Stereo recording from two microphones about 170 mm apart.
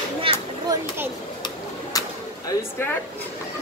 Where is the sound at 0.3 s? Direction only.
30° right (ahead or behind).